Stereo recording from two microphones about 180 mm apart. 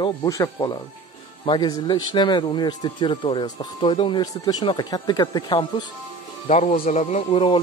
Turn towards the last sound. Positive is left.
turn(degrees=35)  # may be behind; listen again after turning